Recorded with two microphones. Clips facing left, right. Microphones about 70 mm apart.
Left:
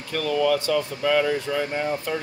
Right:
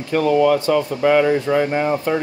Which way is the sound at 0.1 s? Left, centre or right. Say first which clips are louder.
Right 7 dB; right.